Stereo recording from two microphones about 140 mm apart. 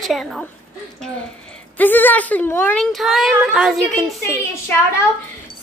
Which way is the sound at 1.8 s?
15° left (ahead or behind).